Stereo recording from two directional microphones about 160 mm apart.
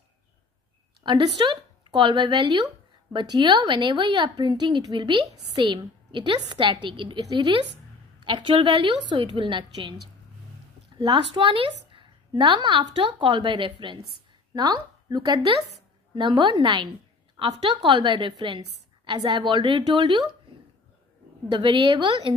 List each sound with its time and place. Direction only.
1.0 s a woman's voice: 30° right (ahead or behind)
11.0 s a woman's voice: 30° right (ahead or behind)
21.5 s a woman's voice: 30° right (ahead or behind)